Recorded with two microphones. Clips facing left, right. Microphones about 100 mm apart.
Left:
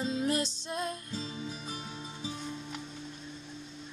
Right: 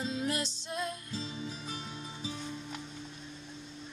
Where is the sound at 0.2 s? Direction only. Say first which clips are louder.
Left 4 dB; 35° left (ahead or behind).